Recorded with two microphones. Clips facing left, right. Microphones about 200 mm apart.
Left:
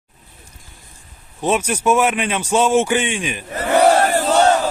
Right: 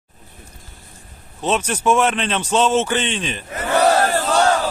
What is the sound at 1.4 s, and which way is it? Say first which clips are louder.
A man's voice: left 2 dB; 10° left (ahead or behind).